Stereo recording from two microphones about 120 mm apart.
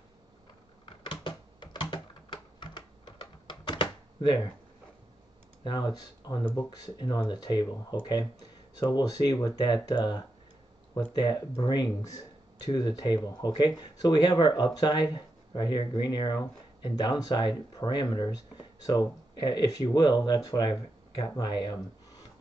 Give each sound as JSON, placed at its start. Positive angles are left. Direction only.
{"t": 0.8, "sound": "typing", "side_deg": 45}
{"t": 5.6, "sound": "speech", "side_deg": 40}